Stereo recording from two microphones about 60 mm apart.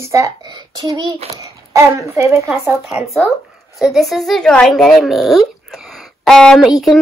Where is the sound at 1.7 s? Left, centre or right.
Right.